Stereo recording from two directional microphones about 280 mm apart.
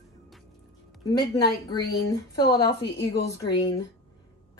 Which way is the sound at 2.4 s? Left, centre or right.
Left.